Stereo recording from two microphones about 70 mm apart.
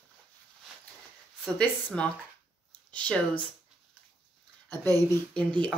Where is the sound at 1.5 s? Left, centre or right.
Centre.